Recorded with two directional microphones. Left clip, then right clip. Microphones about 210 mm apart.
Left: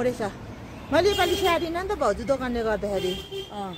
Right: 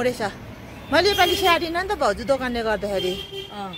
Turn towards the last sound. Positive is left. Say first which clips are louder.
# right 1 dB
turn(degrees=20)  # may be behind; listen again after turning